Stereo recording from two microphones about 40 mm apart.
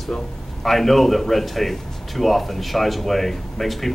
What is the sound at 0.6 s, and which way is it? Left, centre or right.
A man's voice, centre.